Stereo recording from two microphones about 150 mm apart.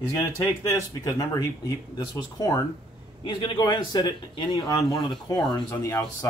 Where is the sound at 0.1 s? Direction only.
20° left (ahead or behind).